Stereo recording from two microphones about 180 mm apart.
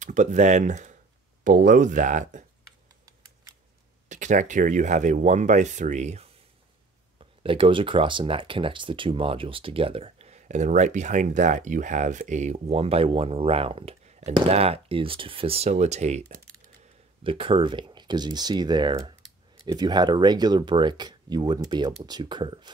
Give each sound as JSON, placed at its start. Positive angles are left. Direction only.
{"t": 0.0, "sound": "speech", "side_deg": -40}
{"t": 4.1, "sound": "speech", "side_deg": -45}
{"t": 7.2, "sound": "speech", "side_deg": -30}